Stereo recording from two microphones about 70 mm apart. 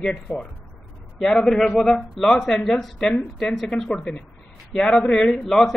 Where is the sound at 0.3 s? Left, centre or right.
Left.